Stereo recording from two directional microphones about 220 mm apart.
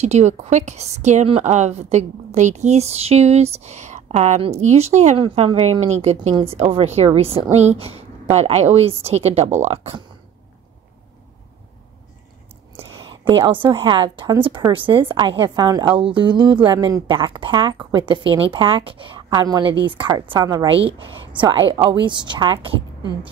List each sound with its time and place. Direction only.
0.0 s a woman's voice: 30° right (ahead or behind)
12.7 s a woman's voice: 20° right (ahead or behind)